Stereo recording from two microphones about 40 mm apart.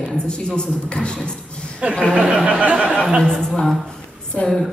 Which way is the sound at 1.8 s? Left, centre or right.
Right.